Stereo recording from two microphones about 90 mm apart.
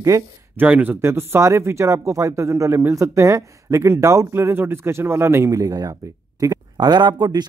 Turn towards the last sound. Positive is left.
turn(degrees=-50)  # may be behind; listen again after turning